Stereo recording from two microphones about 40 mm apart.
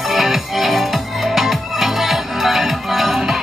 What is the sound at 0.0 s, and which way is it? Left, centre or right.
Music, centre.